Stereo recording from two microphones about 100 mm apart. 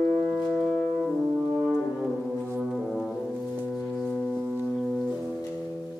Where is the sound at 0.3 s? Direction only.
5° left (ahead or behind).